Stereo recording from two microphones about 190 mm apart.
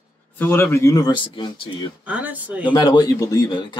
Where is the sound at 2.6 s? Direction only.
25° left (ahead or behind).